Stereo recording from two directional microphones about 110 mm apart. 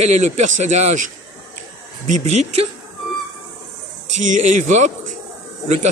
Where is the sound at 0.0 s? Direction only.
90° right.